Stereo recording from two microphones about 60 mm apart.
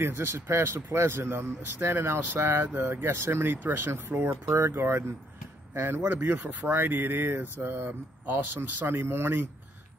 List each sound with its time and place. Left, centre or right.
0.0 s a man's voice: right
6.2 s speech: right